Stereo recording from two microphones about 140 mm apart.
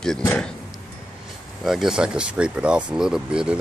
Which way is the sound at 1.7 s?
5° right (ahead or behind).